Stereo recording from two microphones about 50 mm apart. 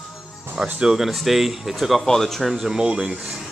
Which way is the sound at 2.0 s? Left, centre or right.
Centre.